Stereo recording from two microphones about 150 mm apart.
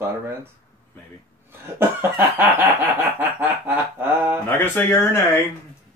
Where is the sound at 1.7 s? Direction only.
15° right (ahead or behind).